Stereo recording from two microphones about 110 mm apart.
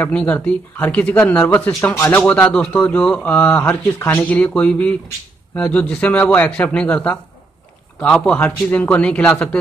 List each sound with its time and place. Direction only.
0.1 s speech: 10° left (ahead or behind)